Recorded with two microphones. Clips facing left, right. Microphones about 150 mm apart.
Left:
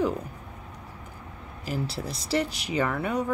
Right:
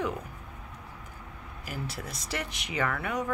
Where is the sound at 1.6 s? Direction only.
30° left (ahead or behind).